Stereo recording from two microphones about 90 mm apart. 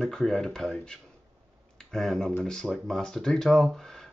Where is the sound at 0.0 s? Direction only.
5° left (ahead or behind).